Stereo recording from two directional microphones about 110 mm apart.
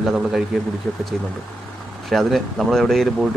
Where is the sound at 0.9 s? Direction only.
10° left (ahead or behind).